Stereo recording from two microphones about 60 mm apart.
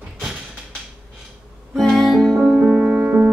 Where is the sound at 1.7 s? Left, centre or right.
Centre.